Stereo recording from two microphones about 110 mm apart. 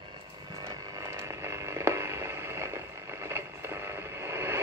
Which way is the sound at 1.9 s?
25° right (ahead or behind).